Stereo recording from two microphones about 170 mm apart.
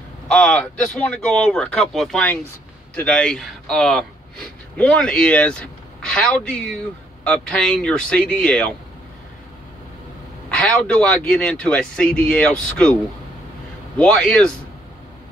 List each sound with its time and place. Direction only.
0.3 s a man's voice: 5° left (ahead or behind)
10.6 s speech: 5° left (ahead or behind)
13.9 s speech: 5° left (ahead or behind)